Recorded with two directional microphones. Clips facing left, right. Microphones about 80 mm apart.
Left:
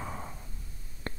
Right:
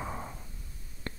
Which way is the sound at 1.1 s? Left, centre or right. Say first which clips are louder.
Left 2 dB; left.